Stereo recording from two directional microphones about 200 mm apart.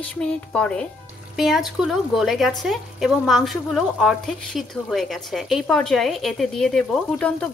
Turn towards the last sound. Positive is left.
turn(degrees=5)  # may be behind; listen again after turning